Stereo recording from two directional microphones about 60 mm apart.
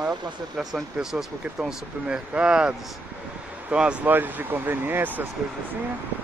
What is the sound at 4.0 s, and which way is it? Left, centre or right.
Speech, right.